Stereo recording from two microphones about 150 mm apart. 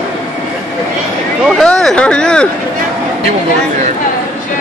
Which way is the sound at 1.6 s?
Centre (ahead or behind).